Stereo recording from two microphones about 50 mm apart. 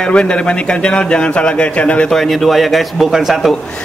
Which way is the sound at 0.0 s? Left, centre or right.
Centre.